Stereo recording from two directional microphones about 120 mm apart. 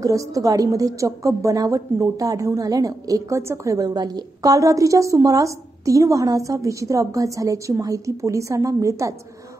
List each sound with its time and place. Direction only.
0.0 s a woman's voice: 25° right (ahead or behind)